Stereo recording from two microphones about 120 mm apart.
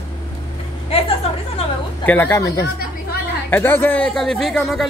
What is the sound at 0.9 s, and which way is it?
Speech, 55° left (ahead or behind).